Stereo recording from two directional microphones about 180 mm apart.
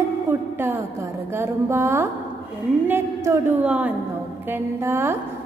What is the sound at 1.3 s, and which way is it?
A woman's voice, 15° right (ahead or behind).